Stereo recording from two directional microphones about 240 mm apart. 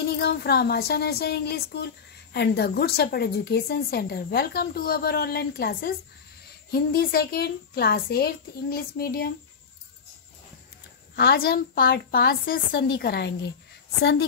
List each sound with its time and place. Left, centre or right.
0.2 s a woman's voice: left
11.1 s a woman's voice: left